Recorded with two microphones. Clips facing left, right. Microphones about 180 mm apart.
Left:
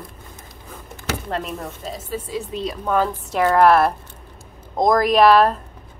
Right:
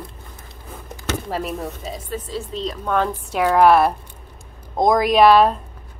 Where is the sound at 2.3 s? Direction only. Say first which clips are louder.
Left 1 dB; 10° left (ahead or behind).